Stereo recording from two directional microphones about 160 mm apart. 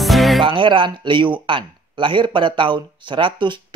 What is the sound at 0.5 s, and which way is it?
Speech, 30° right (ahead or behind).